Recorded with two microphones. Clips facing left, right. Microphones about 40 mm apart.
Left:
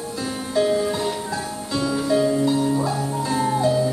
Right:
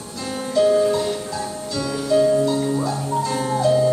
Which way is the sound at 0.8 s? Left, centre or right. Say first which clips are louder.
Right 4 dB; centre.